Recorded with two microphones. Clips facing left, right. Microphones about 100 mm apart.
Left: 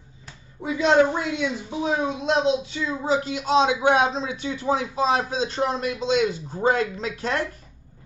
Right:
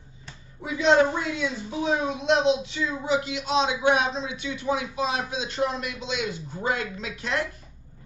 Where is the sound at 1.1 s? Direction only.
20° left (ahead or behind); by 7.4 s 40° left (ahead or behind).